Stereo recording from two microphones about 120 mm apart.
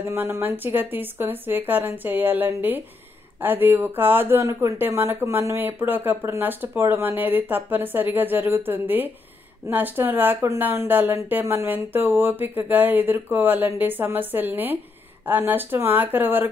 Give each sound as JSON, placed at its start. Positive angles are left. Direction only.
{"t": 0.1, "sound": "speech", "side_deg": -20}